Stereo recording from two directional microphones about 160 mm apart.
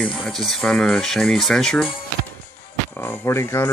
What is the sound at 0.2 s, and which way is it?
Speech, centre (ahead or behind).